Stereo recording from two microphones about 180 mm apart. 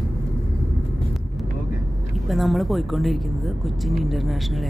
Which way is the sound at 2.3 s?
Centre (ahead or behind).